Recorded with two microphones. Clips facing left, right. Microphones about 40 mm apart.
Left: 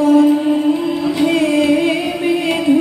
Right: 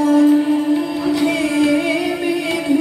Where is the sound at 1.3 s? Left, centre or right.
Left.